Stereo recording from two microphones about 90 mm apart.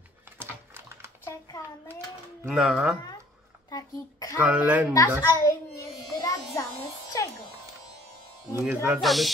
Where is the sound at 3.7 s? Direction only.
45° left (ahead or behind).